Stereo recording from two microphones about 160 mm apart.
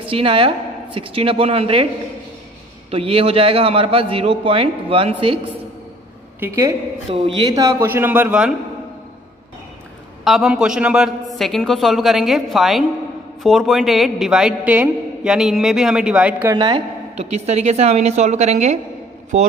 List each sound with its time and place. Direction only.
0.0 s a woman's voice: 35° right (ahead or behind)
2.9 s a man's voice: 35° right (ahead or behind)
6.4 s a man's voice: 15° right (ahead or behind)
7.1 s a man's voice: 35° right (ahead or behind); by 8.5 s 5° right (ahead or behind)
10.2 s a man's voice: 5° right (ahead or behind)
16.5 s a man's voice: 30° right (ahead or behind)